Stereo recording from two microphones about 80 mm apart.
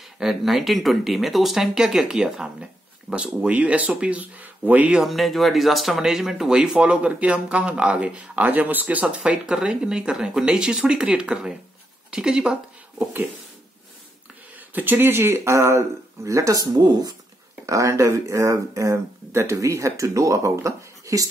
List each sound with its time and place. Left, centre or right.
0.2 s speech: centre
5.0 s speech: centre
14.7 s speech: right
16.7 s speech: right
17.6 s speech: right